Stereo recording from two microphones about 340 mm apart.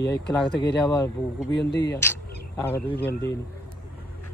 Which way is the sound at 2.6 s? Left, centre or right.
Centre.